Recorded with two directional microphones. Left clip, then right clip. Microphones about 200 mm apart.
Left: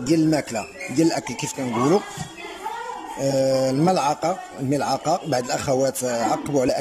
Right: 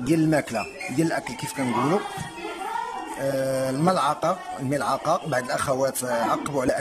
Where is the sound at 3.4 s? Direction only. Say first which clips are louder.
Left 3 dB; 5° left (ahead or behind).